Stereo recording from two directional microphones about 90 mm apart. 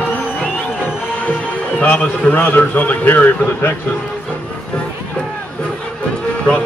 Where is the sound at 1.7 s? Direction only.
15° left (ahead or behind).